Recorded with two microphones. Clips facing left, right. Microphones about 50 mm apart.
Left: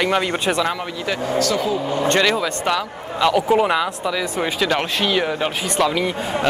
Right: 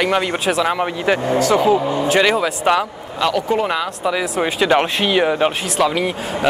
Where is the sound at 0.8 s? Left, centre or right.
Right.